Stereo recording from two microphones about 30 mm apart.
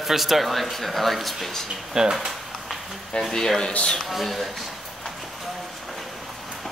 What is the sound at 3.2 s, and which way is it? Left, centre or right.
Speech, centre.